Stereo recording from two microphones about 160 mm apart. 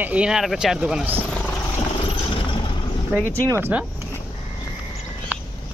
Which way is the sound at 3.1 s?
10° right (ahead or behind).